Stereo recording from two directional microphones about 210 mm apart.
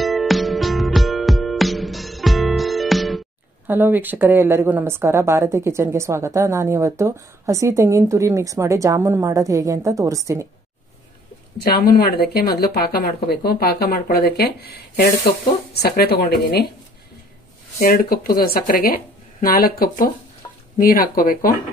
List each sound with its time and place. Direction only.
0.0 s music: centre (ahead or behind)
11.5 s speech: 45° left (ahead or behind)
15.7 s speech: 50° left (ahead or behind)
17.7 s speech: 45° left (ahead or behind)